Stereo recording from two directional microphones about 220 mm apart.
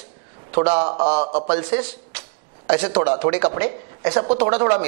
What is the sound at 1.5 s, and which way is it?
A man's voice, 10° right (ahead or behind).